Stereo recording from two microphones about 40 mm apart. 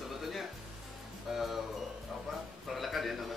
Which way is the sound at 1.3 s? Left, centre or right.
Centre.